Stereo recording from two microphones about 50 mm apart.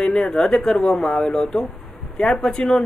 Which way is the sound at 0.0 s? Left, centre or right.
Centre.